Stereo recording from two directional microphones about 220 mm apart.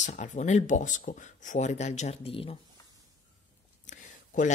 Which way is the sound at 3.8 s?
35° left (ahead or behind).